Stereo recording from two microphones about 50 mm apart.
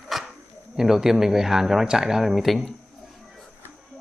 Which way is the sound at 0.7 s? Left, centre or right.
Centre.